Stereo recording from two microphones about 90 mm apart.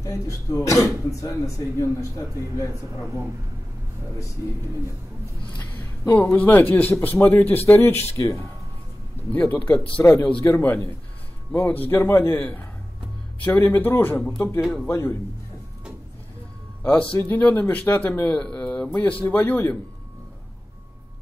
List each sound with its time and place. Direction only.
0.0 s speech: 35° left (ahead or behind)
5.6 s a sound: 20° left (ahead or behind)
6.3 s speech: 20° left (ahead or behind)
9.3 s speech: 20° left (ahead or behind)
16.8 s speech: 20° left (ahead or behind)